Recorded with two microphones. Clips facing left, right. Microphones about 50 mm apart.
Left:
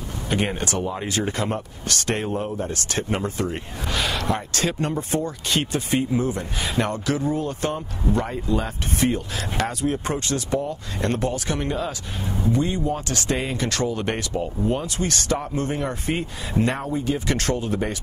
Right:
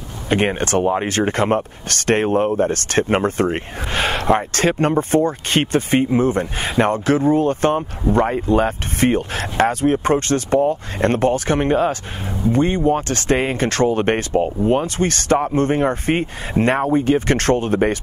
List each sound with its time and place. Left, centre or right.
0.3 s speech: right